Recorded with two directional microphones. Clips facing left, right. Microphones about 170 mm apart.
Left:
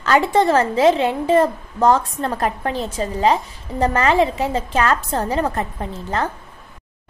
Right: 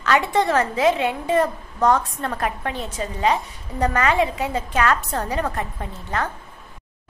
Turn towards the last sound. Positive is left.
turn(degrees=30)  # may be behind; listen again after turning